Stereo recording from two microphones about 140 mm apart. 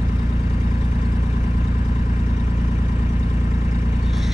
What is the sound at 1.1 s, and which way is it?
Vehicle, 15° right (ahead or behind).